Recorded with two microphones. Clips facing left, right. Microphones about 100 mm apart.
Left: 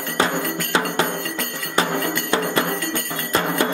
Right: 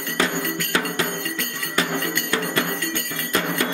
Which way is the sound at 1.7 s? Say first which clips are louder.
Left 3 dB; 25° left (ahead or behind).